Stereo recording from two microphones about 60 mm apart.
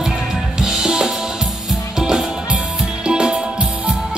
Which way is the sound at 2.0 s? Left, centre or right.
Centre.